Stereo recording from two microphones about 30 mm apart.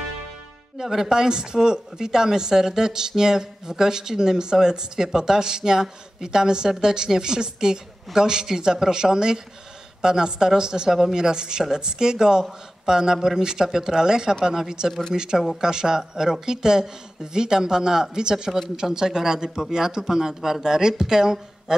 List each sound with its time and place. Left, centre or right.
0.7 s speech: centre
14.9 s speech: centre
15.1 s speech: right